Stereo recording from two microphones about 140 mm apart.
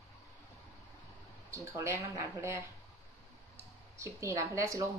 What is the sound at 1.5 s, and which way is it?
Speech, 20° right (ahead or behind).